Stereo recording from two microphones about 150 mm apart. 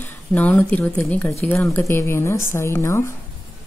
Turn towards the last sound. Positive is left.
turn(degrees=15)  # may be behind; listen again after turning